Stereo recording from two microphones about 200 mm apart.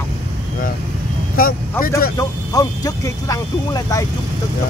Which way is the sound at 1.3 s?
45° left (ahead or behind).